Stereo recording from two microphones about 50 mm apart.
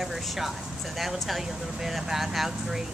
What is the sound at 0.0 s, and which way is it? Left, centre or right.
Speech, centre.